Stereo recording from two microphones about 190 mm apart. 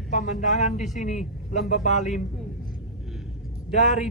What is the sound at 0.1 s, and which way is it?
A man's voice, 40° left (ahead or behind).